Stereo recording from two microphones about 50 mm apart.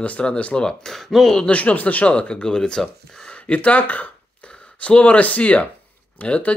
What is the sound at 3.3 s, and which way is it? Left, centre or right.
Speech, left.